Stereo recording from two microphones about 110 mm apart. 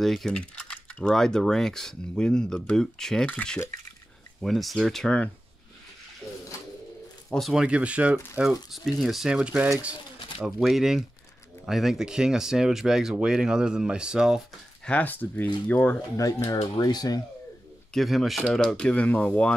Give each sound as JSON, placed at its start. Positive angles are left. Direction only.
{"t": 0.0, "sound": "speech", "side_deg": 0}
{"t": 7.2, "sound": "speech", "side_deg": 0}
{"t": 8.7, "sound": "speech", "side_deg": 0}
{"t": 14.9, "sound": "speech", "side_deg": 15}
{"t": 16.7, "sound": "speech", "side_deg": 35}
{"t": 17.9, "sound": "speech", "side_deg": 0}